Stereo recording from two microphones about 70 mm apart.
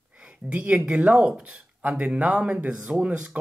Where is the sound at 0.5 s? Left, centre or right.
Centre.